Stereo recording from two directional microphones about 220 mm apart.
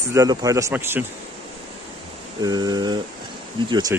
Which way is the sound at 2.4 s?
20° right (ahead or behind).